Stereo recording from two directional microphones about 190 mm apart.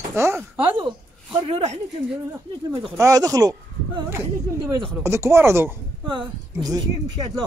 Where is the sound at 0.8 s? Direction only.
25° right (ahead or behind).